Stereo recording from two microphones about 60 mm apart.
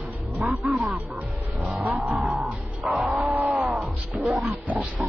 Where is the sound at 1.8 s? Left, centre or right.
Right.